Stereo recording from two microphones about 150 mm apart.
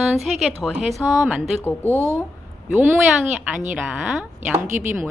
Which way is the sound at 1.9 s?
20° right (ahead or behind).